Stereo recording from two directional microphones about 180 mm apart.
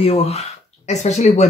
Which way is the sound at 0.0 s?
35° left (ahead or behind).